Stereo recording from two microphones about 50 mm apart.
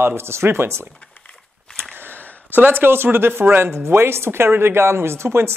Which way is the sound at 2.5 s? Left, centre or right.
Right.